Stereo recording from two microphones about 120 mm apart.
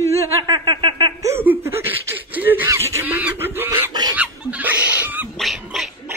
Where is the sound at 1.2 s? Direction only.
20° right (ahead or behind).